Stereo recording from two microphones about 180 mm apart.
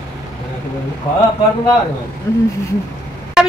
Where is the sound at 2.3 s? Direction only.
15° left (ahead or behind).